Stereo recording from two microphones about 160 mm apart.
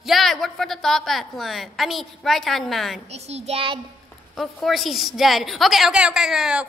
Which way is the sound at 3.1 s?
40° right (ahead or behind).